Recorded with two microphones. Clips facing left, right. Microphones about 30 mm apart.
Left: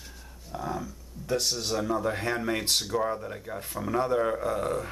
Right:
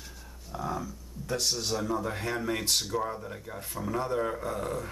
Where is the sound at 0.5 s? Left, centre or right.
Centre.